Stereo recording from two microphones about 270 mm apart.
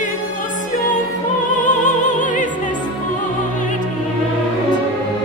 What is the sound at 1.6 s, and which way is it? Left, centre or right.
Music, left.